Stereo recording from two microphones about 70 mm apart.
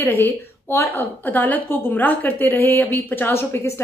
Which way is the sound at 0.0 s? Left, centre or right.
Left.